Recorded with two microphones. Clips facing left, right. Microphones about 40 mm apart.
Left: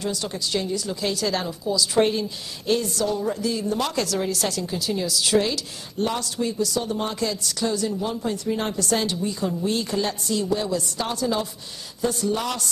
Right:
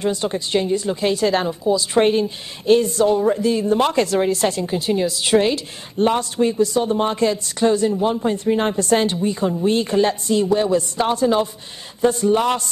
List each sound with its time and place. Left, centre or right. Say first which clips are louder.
0.0 s a woman's voice: right 6 dB; right